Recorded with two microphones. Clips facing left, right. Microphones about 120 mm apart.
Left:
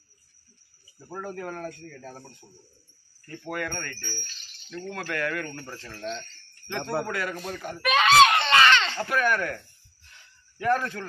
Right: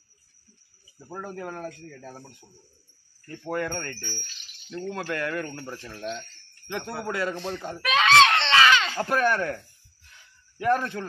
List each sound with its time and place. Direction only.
1.2 s speech: 20° right (ahead or behind)
2.0 s speech: 10° right (ahead or behind)
3.4 s speech: 30° right (ahead or behind)
4.6 s speech: 15° right (ahead or behind)
5.5 s speech: 15° right (ahead or behind)
5.9 s wind chime: 5° right (ahead or behind)
7.1 s speech: 25° right (ahead or behind)
7.8 s screaming: centre (ahead or behind)
8.6 s baby cry: 5° right (ahead or behind)
9.0 s speech: 35° right (ahead or behind)
10.6 s speech: 20° right (ahead or behind)